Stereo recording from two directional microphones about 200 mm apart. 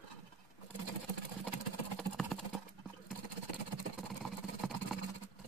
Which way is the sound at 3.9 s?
Centre (ahead or behind).